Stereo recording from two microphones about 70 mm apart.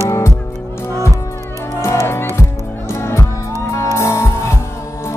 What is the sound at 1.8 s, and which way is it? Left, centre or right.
Music, left.